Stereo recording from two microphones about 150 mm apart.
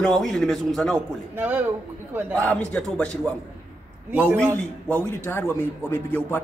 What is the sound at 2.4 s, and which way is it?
A man's voice, 5° left (ahead or behind).